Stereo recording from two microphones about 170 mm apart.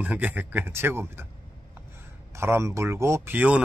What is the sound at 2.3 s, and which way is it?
Speech, 15° right (ahead or behind).